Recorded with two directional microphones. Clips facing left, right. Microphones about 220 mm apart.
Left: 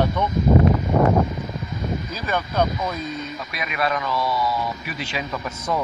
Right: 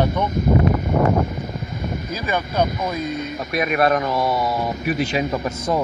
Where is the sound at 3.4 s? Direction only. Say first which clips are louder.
Right 9 dB; 50° right (ahead or behind).